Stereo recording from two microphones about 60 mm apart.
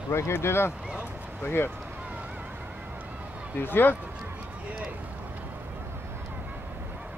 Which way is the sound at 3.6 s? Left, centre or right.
Left.